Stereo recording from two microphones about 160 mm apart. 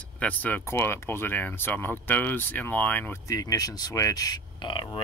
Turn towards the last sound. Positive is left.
turn(degrees=30)  # may be behind; listen again after turning